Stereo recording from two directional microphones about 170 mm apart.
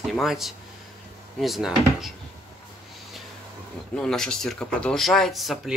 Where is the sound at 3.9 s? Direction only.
5° left (ahead or behind).